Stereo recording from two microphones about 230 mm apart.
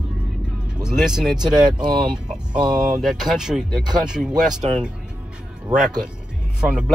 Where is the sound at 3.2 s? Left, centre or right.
Centre.